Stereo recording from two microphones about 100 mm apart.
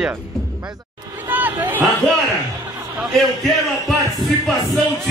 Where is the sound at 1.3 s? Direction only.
15° right (ahead or behind).